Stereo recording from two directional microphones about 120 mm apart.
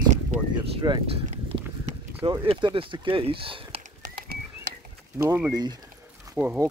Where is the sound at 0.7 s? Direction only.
35° right (ahead or behind).